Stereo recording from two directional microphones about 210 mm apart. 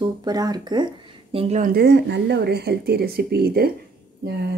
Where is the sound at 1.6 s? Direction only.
45° right (ahead or behind).